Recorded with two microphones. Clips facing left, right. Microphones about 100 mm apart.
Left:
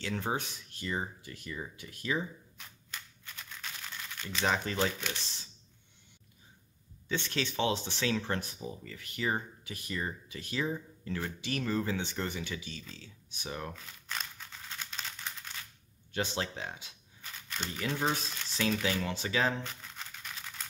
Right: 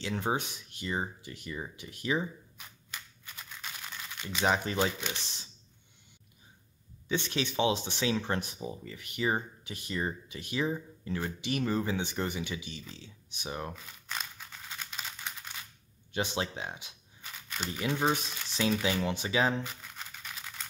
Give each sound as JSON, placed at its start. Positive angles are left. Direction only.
{"t": 0.0, "sound": "speech", "side_deg": -20}
{"t": 7.1, "sound": "speech", "side_deg": -15}
{"t": 14.7, "sound": "crumpling", "side_deg": -10}
{"t": 16.1, "sound": "speech", "side_deg": -15}